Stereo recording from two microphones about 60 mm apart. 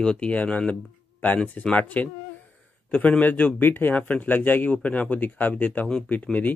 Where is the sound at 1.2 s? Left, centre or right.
Left.